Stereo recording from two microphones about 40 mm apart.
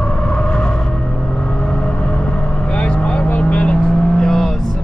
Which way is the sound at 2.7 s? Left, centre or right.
Left.